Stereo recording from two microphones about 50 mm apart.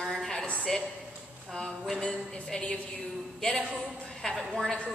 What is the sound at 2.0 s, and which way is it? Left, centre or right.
A woman's voice, centre.